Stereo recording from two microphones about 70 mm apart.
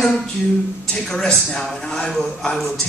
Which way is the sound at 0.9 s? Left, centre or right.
Centre.